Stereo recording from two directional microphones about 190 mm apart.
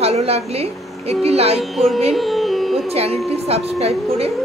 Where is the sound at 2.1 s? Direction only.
Centre (ahead or behind).